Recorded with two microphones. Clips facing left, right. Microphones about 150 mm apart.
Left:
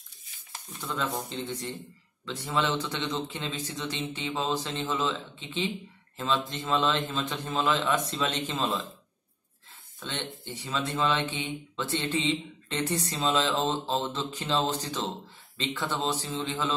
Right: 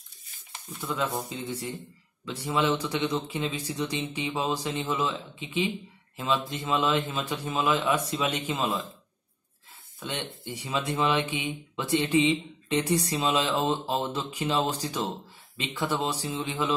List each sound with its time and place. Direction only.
0.7 s speech: 10° right (ahead or behind)
9.9 s speech: 10° right (ahead or behind)